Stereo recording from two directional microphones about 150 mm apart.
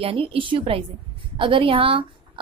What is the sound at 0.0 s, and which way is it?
A woman's voice, 40° right (ahead or behind).